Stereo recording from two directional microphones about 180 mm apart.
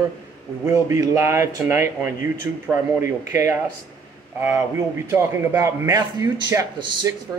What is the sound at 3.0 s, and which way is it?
A man's voice, 15° right (ahead or behind).